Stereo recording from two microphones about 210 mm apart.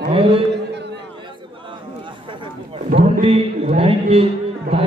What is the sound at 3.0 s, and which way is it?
A man's voice, 25° right (ahead or behind).